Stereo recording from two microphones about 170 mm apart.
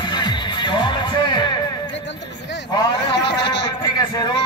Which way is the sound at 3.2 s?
90° left.